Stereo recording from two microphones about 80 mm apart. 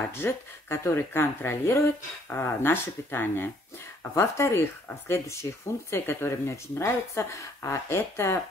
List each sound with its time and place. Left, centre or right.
0.2 s speech: left
4.1 s speech: left